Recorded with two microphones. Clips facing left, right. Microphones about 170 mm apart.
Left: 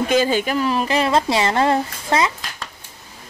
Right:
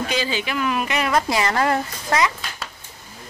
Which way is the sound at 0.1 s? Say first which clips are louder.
Left 7 dB; 50° left (ahead or behind).